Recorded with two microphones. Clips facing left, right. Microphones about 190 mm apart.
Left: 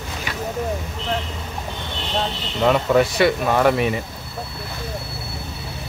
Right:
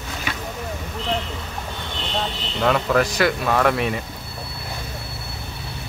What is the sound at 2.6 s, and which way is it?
Speech, 5° left (ahead or behind).